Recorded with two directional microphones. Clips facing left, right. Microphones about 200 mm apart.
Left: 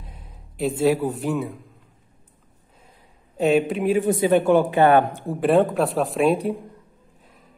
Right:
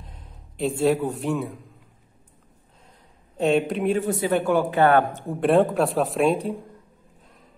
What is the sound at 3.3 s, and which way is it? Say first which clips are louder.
Speech: left 2 dB; 5° left (ahead or behind).